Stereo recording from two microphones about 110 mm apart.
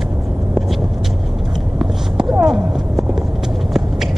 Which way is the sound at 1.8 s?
5° right (ahead or behind).